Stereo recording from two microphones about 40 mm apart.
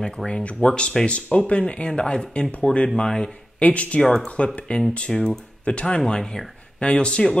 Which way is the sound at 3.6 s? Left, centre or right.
Left.